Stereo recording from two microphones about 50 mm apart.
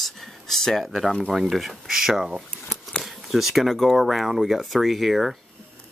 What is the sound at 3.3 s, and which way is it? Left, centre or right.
Speech, centre.